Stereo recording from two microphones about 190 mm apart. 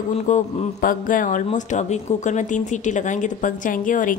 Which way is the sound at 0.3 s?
45° left (ahead or behind).